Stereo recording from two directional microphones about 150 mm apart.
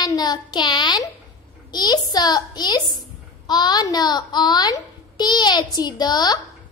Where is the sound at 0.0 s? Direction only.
25° left (ahead or behind).